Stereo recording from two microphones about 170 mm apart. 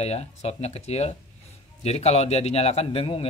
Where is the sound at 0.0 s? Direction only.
40° left (ahead or behind).